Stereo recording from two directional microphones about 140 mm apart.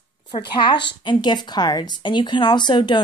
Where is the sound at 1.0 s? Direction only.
35° left (ahead or behind).